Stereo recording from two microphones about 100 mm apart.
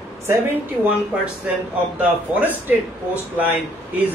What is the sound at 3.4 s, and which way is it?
Speech, 15° right (ahead or behind).